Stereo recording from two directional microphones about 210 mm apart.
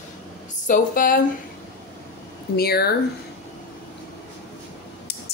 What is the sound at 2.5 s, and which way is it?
Speech, 45° left (ahead or behind).